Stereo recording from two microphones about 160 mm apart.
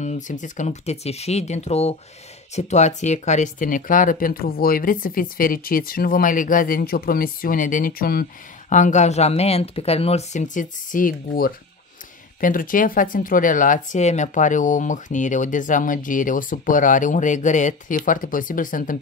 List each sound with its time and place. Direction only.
0.0 s speech: 50° left (ahead or behind)